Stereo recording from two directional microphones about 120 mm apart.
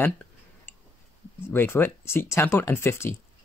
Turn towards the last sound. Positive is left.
turn(degrees=20)  # may be behind; listen again after turning